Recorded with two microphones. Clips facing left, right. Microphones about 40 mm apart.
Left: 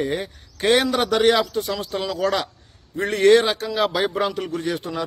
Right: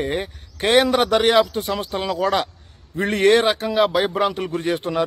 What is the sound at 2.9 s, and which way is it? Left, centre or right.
Speech, right.